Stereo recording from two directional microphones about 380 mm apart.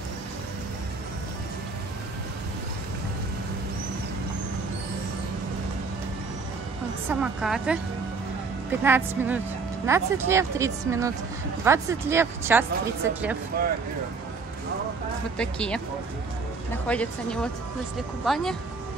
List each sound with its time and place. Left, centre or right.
7.1 s a woman's voice: centre
8.8 s a woman's voice: centre
13.5 s speech: right
15.3 s a woman's voice: centre